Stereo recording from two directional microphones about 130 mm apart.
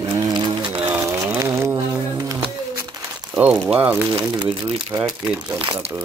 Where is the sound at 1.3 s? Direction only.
20° right (ahead or behind).